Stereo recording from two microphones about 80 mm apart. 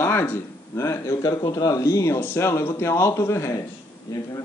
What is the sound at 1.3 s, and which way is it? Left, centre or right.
A man's voice, left.